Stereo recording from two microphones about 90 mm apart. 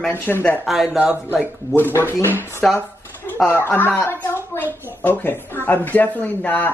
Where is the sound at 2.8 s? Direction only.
25° left (ahead or behind).